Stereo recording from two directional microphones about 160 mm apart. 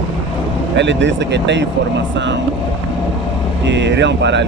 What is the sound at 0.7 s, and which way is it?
Speech, 90° right.